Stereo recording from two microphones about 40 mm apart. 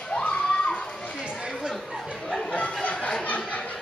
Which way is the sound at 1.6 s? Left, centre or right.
Centre.